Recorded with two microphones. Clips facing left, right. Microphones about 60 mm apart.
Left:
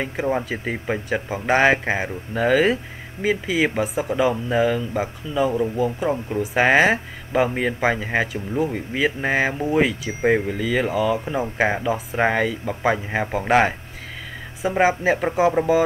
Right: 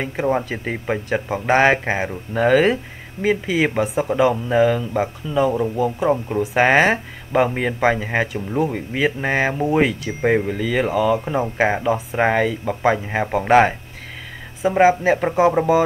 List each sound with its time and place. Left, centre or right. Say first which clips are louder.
0.0 s speech: right 2 dB; centre